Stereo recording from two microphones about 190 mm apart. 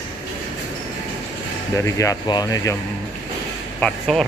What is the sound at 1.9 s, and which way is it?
Speech, 15° left (ahead or behind).